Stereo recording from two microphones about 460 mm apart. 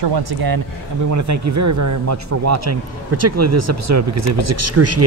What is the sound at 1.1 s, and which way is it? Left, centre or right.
Speech, right.